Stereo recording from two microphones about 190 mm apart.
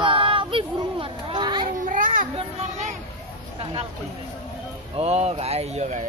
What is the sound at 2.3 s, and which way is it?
Speech, 35° right (ahead or behind).